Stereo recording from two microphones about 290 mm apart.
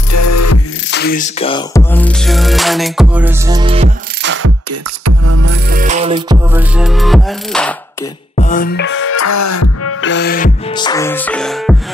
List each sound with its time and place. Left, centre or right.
0.1 s music: left
0.8 s music: left
1.4 s music: centre
4.2 s music: right
5.0 s music: right
5.5 s music: right; by 7.7 s centre
8.4 s music: left
9.1 s music: left
10.0 s music: left
10.7 s music: centre